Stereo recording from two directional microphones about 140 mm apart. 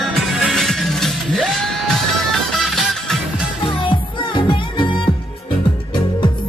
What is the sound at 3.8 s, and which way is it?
Music, 35° left (ahead or behind).